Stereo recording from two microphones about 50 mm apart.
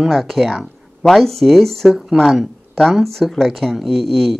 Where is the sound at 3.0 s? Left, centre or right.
Centre.